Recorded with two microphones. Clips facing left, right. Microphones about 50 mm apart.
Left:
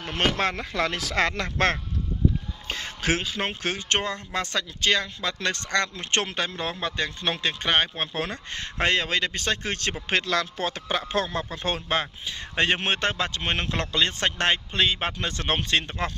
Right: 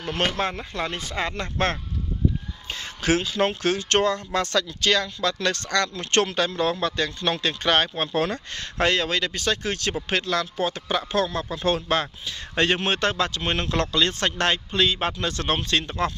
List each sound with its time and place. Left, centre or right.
0.0 s speech: left
0.3 s speech: left
2.7 s speech: left; by 8.4 s centre
8.5 s a man's voice: left
11.1 s a man's voice: left